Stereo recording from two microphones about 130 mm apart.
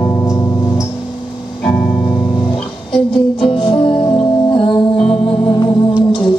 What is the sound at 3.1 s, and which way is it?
Music, 45° left (ahead or behind).